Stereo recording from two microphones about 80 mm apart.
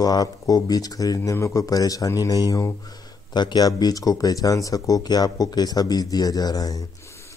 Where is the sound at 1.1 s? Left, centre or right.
Left.